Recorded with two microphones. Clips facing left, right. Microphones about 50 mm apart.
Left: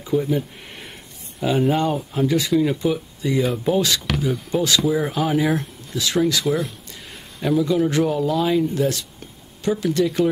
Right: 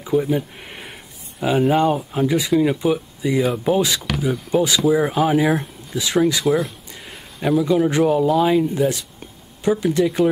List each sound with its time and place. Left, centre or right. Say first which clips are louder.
0.0 s speech: right 2 dB; centre
6.4 s a sound: right 3 dB; centre
7.4 s speech: right 2 dB; centre